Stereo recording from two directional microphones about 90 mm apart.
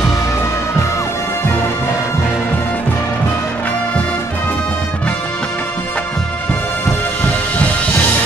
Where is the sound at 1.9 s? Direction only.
10° right (ahead or behind).